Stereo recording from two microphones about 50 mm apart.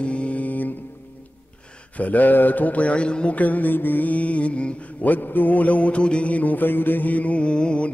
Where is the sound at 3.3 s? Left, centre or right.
Left.